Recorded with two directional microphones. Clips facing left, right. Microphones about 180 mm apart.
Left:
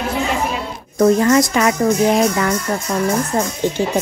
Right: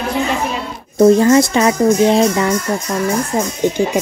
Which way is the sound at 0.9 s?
25° right (ahead or behind).